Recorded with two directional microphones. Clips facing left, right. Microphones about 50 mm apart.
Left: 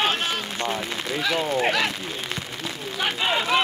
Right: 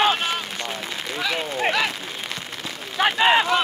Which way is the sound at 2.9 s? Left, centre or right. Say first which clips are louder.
Right 7 dB; right.